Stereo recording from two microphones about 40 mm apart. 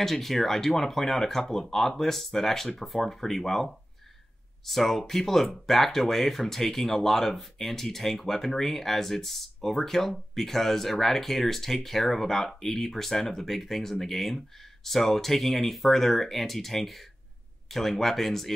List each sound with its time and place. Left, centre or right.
0.0 s speech: centre